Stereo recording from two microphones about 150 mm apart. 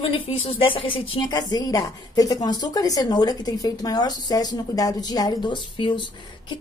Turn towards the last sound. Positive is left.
turn(degrees=30)  # may be behind; listen again after turning